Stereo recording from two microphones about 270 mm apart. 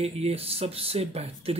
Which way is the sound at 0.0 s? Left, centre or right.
Right.